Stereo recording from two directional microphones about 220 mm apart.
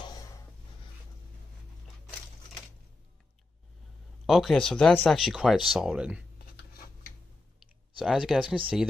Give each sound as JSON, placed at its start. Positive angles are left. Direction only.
{"t": 0.0, "sound": "a sound", "side_deg": 20}
{"t": 4.3, "sound": "speech", "side_deg": 0}
{"t": 8.0, "sound": "speech", "side_deg": 0}